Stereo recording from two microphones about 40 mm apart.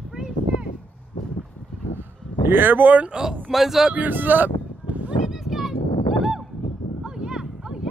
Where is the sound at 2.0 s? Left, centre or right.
Right.